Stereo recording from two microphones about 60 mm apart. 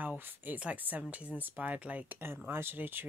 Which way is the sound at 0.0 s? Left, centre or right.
Right.